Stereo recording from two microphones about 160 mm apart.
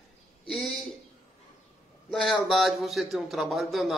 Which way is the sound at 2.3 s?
Centre (ahead or behind).